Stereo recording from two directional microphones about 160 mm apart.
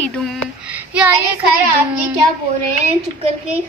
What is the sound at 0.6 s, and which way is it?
Child singing, 10° right (ahead or behind).